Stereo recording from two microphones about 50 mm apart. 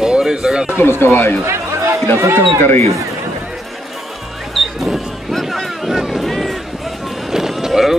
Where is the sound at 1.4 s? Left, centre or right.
Right.